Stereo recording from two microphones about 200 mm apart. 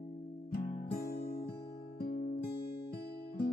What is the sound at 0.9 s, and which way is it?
Music, 50° left (ahead or behind).